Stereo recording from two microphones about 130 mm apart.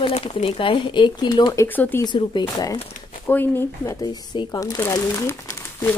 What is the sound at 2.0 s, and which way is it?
Speech, 35° left (ahead or behind).